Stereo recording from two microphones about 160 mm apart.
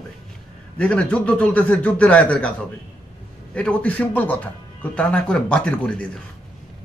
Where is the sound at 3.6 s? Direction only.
5° left (ahead or behind).